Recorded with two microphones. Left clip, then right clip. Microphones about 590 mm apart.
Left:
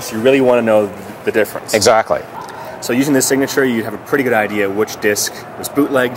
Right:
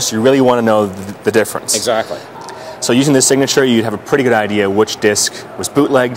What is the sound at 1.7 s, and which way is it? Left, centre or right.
Speech, left.